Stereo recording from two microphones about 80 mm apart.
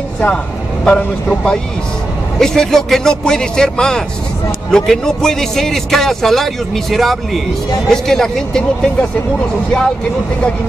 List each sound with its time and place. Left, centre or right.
0.8 s a man's voice: centre